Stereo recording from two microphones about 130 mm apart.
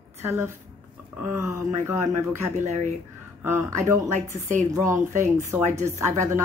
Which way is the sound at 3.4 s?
25° right (ahead or behind).